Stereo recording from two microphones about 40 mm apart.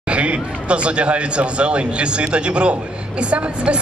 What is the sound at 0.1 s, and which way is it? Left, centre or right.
A woman's voice, right.